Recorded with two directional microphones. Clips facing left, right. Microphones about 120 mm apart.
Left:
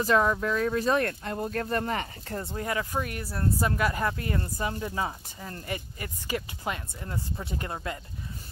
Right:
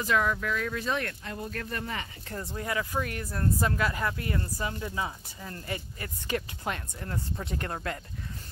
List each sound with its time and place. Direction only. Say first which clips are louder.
0.0 s speech: left 4 dB; 35° left (ahead or behind)
3.6 s speech: left 3 dB; 20° left (ahead or behind)
3.9 s speech: left 2 dB; 30° left (ahead or behind)
6.2 s speech: even; 5° left (ahead or behind)